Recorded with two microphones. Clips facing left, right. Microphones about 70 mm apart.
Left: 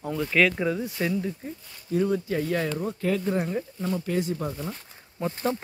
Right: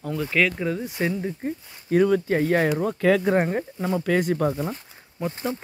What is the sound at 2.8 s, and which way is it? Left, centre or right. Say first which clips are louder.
Speech: right 6 dB; right.